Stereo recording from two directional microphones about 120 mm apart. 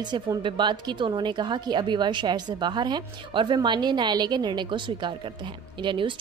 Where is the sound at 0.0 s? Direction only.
35° right (ahead or behind).